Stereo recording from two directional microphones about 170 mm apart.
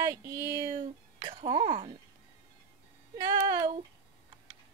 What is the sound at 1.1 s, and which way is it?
Speech, 30° right (ahead or behind).